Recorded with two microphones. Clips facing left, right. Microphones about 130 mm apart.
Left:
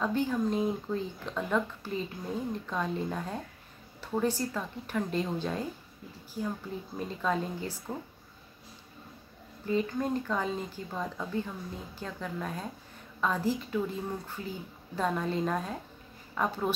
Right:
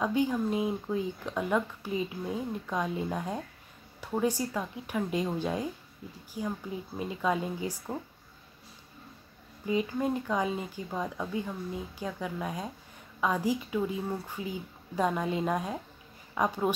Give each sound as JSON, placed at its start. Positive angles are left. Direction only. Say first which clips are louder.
{"t": 0.0, "sound": "speech", "louder": "right 1 dB", "side_deg": -10}
{"t": 9.7, "sound": "speech", "louder": "right 1 dB", "side_deg": -10}